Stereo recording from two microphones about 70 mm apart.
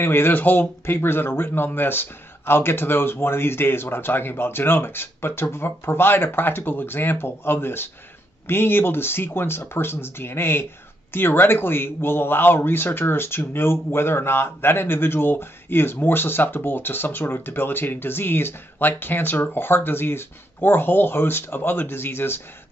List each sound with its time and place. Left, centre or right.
0.0 s a man's voice: left